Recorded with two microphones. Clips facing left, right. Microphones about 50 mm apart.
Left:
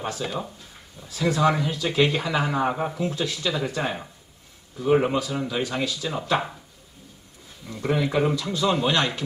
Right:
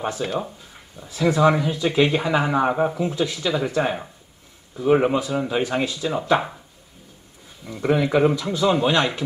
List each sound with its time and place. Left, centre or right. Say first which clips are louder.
0.0 s speech: right 4 dB; right
4.7 s speech: right 3 dB; centre
5.5 s speech: right 4 dB; right
7.6 s speech: right 4 dB; centre